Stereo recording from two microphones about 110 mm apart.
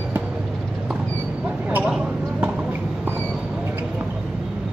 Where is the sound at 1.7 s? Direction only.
15° right (ahead or behind).